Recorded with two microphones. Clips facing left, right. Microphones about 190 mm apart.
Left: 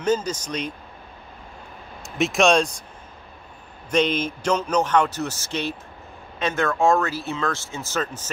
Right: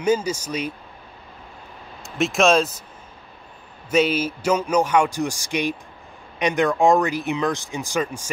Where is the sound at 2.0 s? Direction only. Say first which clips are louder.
Right 1 dB; centre (ahead or behind).